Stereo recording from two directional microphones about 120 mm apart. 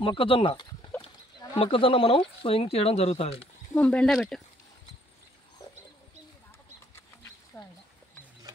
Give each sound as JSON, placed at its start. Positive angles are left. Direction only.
{"t": 0.0, "sound": "speech", "side_deg": 45}
{"t": 3.7, "sound": "speech", "side_deg": 10}
{"t": 7.0, "sound": "a sound", "side_deg": 20}